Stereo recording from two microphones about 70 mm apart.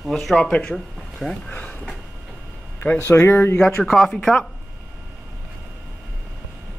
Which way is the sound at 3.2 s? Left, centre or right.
Left.